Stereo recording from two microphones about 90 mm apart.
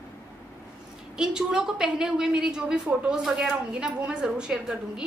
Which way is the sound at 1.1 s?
10° right (ahead or behind).